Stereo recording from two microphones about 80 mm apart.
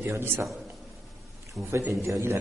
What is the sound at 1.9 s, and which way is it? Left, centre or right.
Speech, right.